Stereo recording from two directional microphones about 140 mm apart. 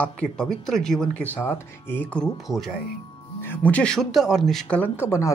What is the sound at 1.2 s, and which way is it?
Speech, 15° left (ahead or behind).